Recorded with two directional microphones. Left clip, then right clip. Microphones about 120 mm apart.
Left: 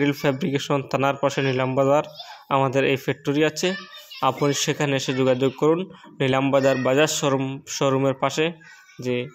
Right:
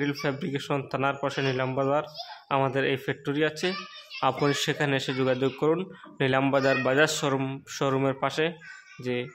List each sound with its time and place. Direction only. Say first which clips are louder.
0.0 s a man's voice: left 7 dB; 40° left (ahead or behind)
4.2 s a man's voice: left 4 dB; 20° left (ahead or behind)